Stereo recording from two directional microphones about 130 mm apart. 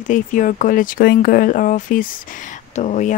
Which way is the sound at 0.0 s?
85° left.